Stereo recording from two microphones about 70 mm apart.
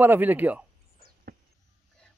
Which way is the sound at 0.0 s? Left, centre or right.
Right.